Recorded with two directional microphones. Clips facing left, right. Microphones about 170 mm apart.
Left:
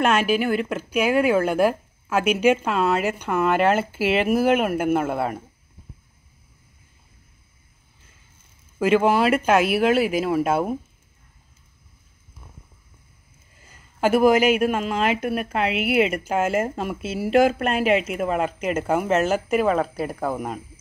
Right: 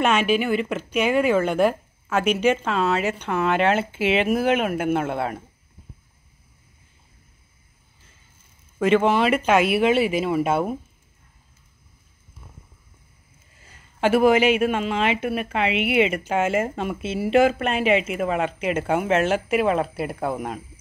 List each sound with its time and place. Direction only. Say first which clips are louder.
0.0 s speech: even; centre (ahead or behind)
8.7 s speech: even; 5° left (ahead or behind)
14.5 s speech: even; 5° left (ahead or behind)